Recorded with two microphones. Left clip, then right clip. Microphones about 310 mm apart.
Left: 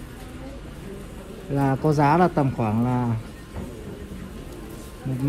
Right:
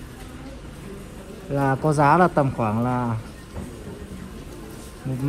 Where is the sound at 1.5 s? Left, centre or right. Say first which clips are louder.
Right 1 dB; right.